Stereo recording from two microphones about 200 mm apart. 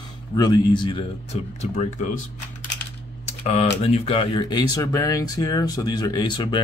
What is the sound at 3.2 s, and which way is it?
Speech, 30° left (ahead or behind).